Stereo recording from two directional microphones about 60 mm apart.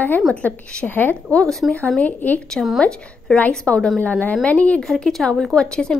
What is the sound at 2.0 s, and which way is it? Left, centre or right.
Speech, left.